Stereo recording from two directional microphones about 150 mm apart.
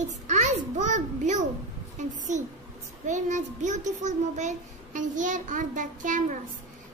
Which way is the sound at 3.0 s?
55° right (ahead or behind).